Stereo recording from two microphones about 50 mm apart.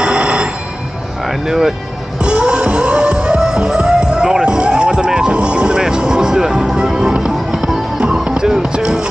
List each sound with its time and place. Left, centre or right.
0.0 s telephone bell ringing: right
1.2 s speech: centre
2.1 s music: centre